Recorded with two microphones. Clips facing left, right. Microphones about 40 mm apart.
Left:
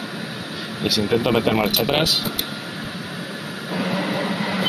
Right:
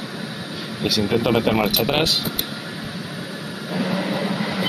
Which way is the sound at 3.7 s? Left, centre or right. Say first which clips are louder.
Even; centre.